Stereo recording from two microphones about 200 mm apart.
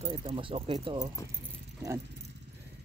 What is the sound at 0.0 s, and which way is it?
Speech, 30° right (ahead or behind).